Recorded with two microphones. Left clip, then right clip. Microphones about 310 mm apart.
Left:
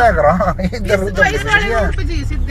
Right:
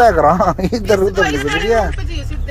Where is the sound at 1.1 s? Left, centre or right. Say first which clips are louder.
Left 3 dB; centre.